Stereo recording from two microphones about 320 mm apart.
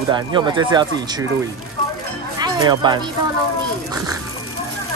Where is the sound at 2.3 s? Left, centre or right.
Centre.